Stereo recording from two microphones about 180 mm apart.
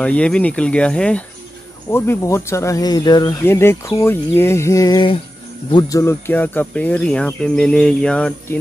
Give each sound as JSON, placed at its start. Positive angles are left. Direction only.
{"t": 0.0, "sound": "speech", "side_deg": 5}